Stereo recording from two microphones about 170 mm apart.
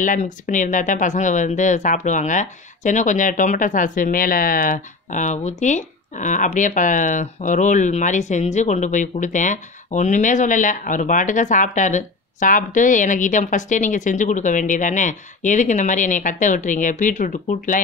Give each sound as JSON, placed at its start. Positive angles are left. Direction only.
{"t": 0.0, "sound": "speech", "side_deg": 50}